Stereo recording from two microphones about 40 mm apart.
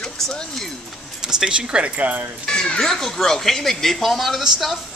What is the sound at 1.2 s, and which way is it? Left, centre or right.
Speech, centre.